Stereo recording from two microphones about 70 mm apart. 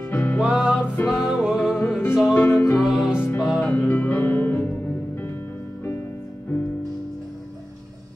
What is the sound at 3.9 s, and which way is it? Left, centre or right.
Music, centre.